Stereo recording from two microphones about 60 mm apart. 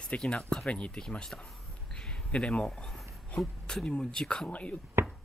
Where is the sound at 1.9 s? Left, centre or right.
Centre.